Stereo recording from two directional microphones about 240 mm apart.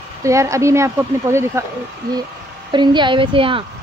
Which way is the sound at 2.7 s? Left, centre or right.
Centre.